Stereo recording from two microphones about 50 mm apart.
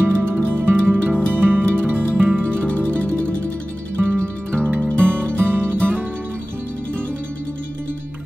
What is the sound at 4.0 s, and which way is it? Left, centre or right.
Music, right.